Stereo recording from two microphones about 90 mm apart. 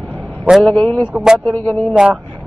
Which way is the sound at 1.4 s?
15° left (ahead or behind).